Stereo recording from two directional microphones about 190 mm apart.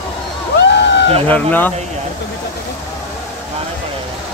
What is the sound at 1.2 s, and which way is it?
Speech, 10° left (ahead or behind).